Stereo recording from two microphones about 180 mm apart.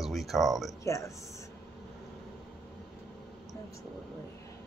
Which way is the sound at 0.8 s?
15° left (ahead or behind).